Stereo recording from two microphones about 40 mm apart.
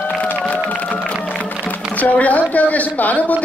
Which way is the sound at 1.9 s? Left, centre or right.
Left.